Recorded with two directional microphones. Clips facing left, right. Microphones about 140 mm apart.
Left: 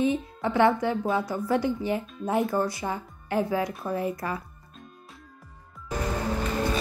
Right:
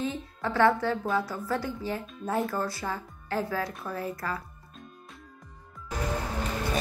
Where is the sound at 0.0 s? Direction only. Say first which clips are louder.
Left 6 dB; 15° left (ahead or behind).